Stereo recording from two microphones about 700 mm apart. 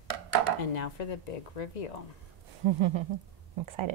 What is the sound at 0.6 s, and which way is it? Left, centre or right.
Speech, left.